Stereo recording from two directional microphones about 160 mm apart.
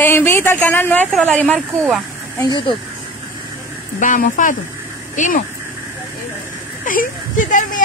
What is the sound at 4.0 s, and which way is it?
Speech, 55° left (ahead or behind).